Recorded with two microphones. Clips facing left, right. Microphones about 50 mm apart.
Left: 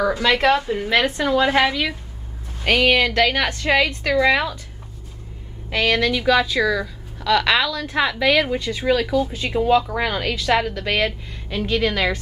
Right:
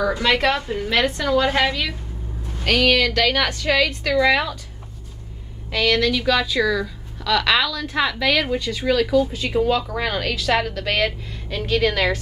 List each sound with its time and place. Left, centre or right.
0.5 s a woman's voice: centre
0.7 s a woman's voice: centre
5.7 s speech: left; by 12.1 s centre